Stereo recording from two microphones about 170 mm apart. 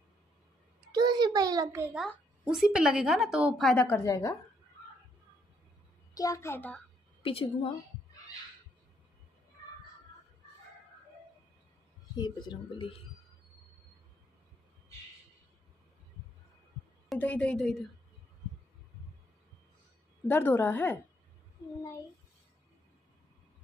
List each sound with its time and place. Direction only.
0.9 s a sound: 25° right (ahead or behind)
2.4 s a woman's voice: 5° right (ahead or behind); by 4.4 s 15° left (ahead or behind)
6.1 s a woman's voice: 20° left (ahead or behind)
7.2 s a woman's voice: 35° left (ahead or behind)
12.2 s speech: 25° left (ahead or behind)
17.1 s a woman's voice: 10° left (ahead or behind)
20.2 s a woman's voice: 10° left (ahead or behind)